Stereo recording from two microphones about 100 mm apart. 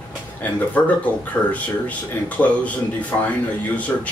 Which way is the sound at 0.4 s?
15° left (ahead or behind).